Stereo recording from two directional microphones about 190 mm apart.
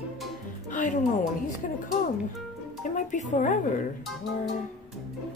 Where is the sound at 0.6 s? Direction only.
40° left (ahead or behind).